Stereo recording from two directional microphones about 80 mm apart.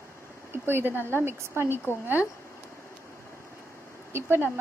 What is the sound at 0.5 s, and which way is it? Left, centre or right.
A woman's voice, right.